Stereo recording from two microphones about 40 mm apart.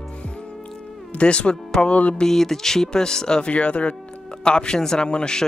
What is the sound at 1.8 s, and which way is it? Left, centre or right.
Music, left.